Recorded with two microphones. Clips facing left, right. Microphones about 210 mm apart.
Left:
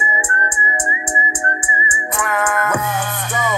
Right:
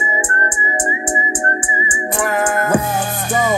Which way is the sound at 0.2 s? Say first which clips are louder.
Right 2 dB; 35° right (ahead or behind).